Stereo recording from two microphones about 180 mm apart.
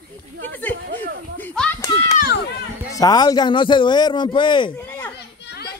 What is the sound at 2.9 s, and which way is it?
A man's voice, 20° left (ahead or behind).